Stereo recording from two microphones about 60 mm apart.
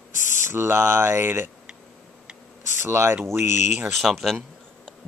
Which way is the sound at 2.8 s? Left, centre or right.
Right.